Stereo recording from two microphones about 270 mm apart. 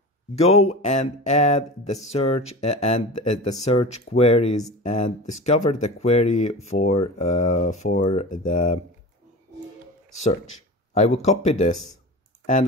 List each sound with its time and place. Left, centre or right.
0.4 s speech: left
11.2 s speech: left